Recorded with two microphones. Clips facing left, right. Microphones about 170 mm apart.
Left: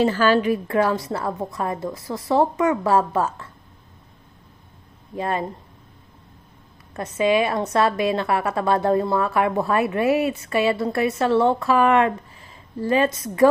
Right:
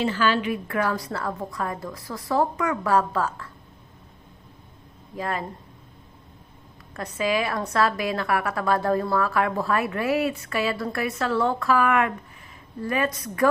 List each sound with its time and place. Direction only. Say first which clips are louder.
0.0 s a woman's voice: left 5 dB; 40° left (ahead or behind)
0.7 s a woman's voice: left 5 dB; 25° left (ahead or behind)
5.1 s a woman's voice: left 4 dB; 25° left (ahead or behind)
6.9 s a woman's voice: left 5 dB; 20° left (ahead or behind)